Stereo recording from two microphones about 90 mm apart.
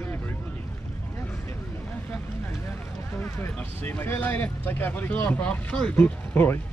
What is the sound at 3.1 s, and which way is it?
Speech, 25° left (ahead or behind).